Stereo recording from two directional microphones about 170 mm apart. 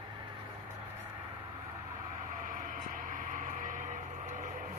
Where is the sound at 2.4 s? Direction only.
55° right (ahead or behind).